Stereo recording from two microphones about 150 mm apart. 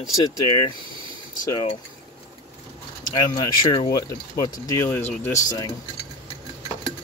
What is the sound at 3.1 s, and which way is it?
Speech, 30° left (ahead or behind).